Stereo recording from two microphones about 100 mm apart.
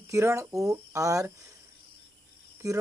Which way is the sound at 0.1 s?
30° right (ahead or behind).